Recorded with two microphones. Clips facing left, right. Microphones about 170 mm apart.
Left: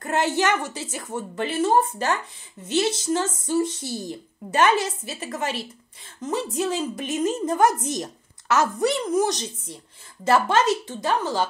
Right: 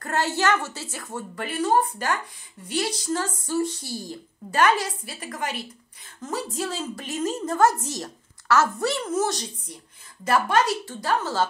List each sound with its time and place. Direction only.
0.0 s a woman's voice: 20° left (ahead or behind)